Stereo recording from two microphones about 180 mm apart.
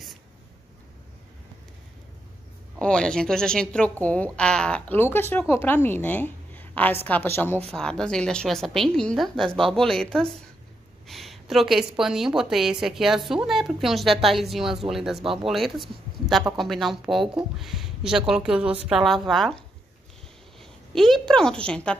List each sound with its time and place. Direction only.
2.8 s a woman's voice: 5° left (ahead or behind)
20.9 s a woman's voice: centre (ahead or behind)